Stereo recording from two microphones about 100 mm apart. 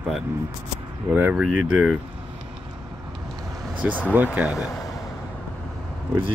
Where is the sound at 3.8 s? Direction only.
15° right (ahead or behind).